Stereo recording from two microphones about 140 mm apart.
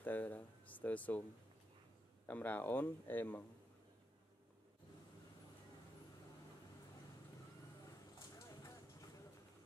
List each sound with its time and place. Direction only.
0.0 s a sound: 10° left (ahead or behind)
2.2 s speech: 10° left (ahead or behind)
8.4 s clip-clop: 20° left (ahead or behind)